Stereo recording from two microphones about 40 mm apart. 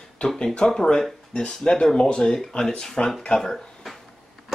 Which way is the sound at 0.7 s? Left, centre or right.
Centre.